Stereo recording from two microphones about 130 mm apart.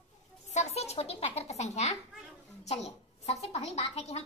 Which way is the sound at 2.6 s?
60° left (ahead or behind).